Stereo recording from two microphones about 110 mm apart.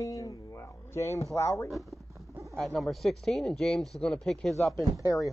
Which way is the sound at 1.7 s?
Centre (ahead or behind).